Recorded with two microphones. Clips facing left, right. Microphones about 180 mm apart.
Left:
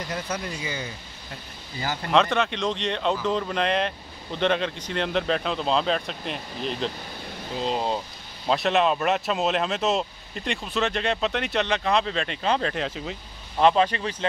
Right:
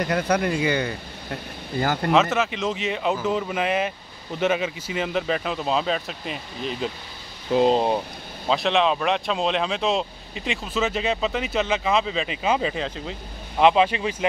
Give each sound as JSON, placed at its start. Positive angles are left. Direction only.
{"t": 0.0, "sound": "speech", "side_deg": -65}
{"t": 2.1, "sound": "speech", "side_deg": -5}
{"t": 7.5, "sound": "speech", "side_deg": -65}
{"t": 8.5, "sound": "speech", "side_deg": 0}